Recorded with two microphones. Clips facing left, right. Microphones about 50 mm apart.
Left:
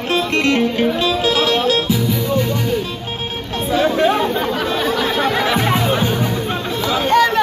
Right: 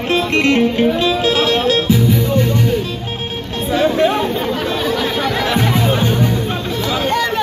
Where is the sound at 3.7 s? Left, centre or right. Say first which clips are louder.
Right 1 dB; centre.